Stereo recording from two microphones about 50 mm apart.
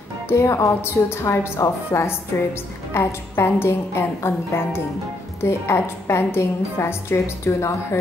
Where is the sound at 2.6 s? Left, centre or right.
Left.